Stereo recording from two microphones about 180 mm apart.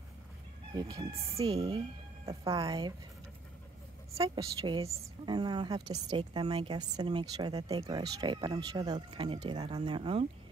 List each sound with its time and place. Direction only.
0.7 s a woman's voice: 20° right (ahead or behind)
2.2 s a woman's voice: 20° right (ahead or behind)
4.4 s a woman's voice: 25° right (ahead or behind)